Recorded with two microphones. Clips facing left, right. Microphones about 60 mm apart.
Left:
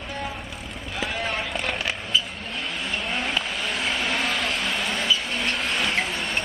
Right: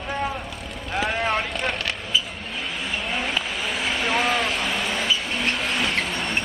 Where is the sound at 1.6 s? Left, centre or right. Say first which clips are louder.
Right 1 dB; centre.